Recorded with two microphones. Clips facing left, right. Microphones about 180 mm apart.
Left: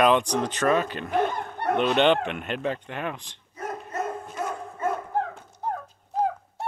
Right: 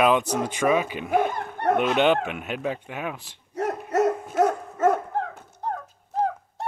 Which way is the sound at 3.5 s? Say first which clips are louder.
Right 8 dB; 75° right (ahead or behind).